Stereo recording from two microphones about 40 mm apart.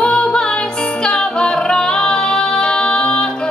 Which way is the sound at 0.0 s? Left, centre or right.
Left.